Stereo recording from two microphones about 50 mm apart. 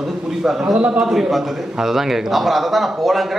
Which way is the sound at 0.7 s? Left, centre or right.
Right.